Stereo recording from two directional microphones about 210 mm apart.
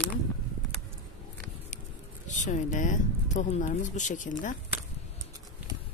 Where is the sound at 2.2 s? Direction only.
35° left (ahead or behind).